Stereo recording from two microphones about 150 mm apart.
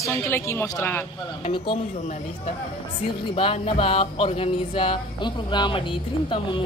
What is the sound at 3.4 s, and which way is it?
Music, 35° left (ahead or behind).